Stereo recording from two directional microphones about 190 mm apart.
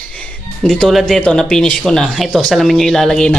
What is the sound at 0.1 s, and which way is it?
Speech, 5° left (ahead or behind).